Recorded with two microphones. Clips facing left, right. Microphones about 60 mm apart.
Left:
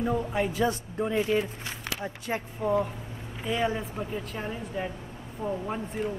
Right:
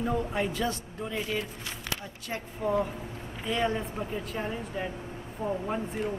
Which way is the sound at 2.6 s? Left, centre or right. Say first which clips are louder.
Left 1 dB; centre.